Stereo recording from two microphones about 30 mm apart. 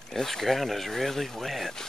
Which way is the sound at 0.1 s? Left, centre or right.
Centre.